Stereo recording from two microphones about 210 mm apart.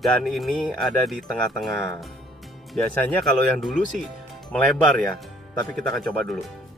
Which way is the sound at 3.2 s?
5° left (ahead or behind).